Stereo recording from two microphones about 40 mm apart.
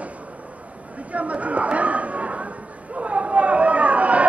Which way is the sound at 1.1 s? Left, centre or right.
Right.